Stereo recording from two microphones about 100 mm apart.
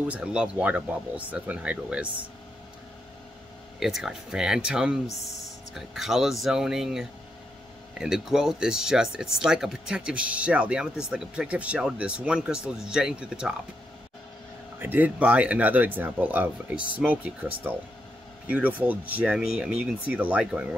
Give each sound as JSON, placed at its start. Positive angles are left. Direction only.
{"t": 0.1, "sound": "speech", "side_deg": -10}
{"t": 3.8, "sound": "speech", "side_deg": -5}
{"t": 14.8, "sound": "speech", "side_deg": -15}